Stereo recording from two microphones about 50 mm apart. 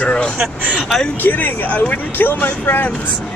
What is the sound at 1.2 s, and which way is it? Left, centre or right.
Speech, left.